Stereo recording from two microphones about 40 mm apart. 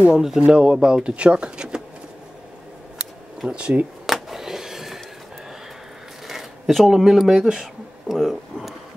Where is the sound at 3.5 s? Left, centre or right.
Right.